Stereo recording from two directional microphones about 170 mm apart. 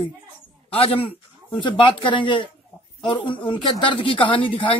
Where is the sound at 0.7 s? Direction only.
30° left (ahead or behind).